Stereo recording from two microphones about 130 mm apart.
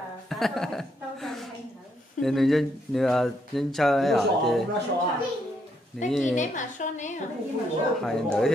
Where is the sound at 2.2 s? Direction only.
Centre (ahead or behind).